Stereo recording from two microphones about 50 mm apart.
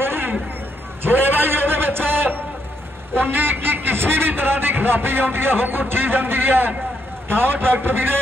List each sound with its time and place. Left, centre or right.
0.0 s hubbub: right
1.0 s a sound: right
3.2 s a man's voice: right